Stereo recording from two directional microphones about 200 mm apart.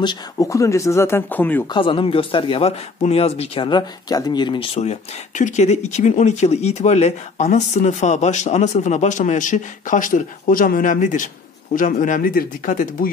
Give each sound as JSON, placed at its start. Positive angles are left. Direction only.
{"t": 0.0, "sound": "speech", "side_deg": 20}
{"t": 1.7, "sound": "speech", "side_deg": 25}